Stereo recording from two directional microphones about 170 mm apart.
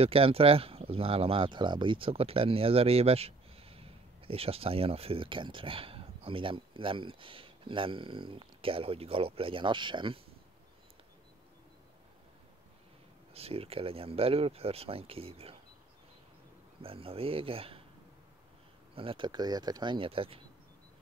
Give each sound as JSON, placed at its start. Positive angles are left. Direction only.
{"t": 0.0, "sound": "speech", "side_deg": -35}
{"t": 13.3, "sound": "speech", "side_deg": -35}
{"t": 16.8, "sound": "speech", "side_deg": -35}
{"t": 18.9, "sound": "speech", "side_deg": -30}